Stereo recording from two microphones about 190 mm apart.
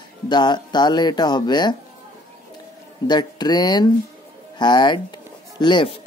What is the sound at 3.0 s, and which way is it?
Speech, 20° left (ahead or behind).